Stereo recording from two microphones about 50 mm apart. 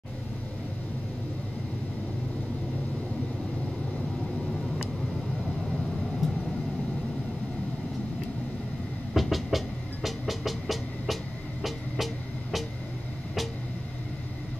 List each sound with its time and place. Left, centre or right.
5.6 s vehicle: centre
9.1 s vehicle: centre
10.0 s music: centre